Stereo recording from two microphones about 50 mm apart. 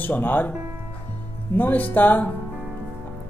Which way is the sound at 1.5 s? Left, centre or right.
Left.